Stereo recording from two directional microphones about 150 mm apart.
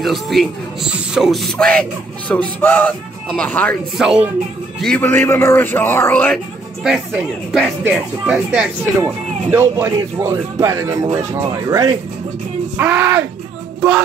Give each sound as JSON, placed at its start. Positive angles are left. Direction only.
{"t": 0.0, "sound": "speech", "side_deg": 0}
{"t": 4.0, "sound": "speech", "side_deg": -5}
{"t": 4.7, "sound": "speech", "side_deg": 5}
{"t": 6.3, "sound": "speech", "side_deg": -5}
{"t": 13.7, "sound": "music", "side_deg": -10}